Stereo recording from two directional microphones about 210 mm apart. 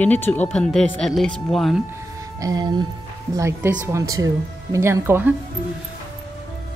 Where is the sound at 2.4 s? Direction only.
20° right (ahead or behind).